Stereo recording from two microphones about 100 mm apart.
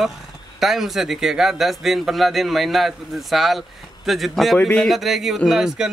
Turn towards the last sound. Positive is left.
turn(degrees=-5)  # may be behind; listen again after turning